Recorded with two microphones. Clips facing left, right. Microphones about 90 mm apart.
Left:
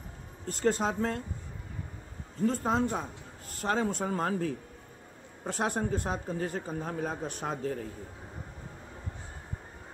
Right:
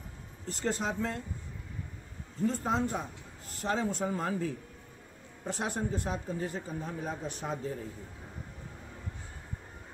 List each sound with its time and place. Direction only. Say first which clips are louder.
0.5 s speech: left 5 dB; 45° left (ahead or behind)
2.4 s speech: left 2 dB; 45° left (ahead or behind)